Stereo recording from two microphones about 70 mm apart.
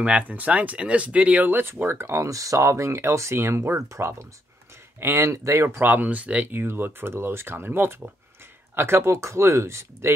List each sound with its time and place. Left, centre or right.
0.0 s speech: right
5.8 s speech: right